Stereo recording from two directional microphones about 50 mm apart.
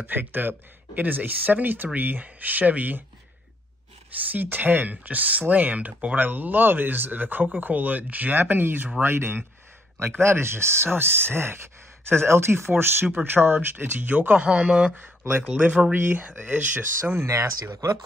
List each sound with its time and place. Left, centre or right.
0.0 s speech: right
4.3 s speech: right
15.0 s speech: right
15.4 s speech: right
15.9 s speech: right
16.2 s speech: right
17.0 s speech: right